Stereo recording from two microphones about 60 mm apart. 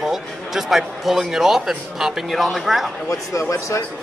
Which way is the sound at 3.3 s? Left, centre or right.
Left.